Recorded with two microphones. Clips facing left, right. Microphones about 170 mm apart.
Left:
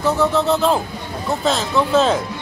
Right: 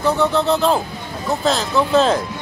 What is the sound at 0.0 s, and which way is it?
Speech, centre (ahead or behind).